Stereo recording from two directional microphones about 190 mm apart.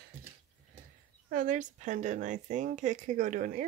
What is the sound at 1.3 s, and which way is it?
Speech, 40° right (ahead or behind).